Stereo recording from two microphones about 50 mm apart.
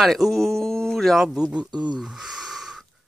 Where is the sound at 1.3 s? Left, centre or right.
Centre.